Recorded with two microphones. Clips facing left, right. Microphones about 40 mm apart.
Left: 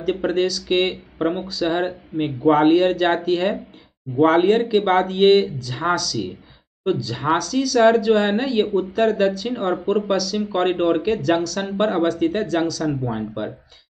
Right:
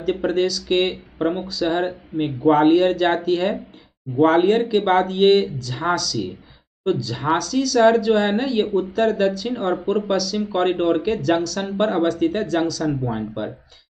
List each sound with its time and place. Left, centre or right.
0.0 s speech: centre